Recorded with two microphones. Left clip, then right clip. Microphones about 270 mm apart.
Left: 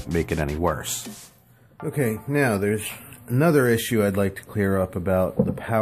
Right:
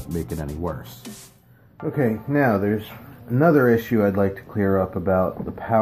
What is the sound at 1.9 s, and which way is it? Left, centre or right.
Speech, left.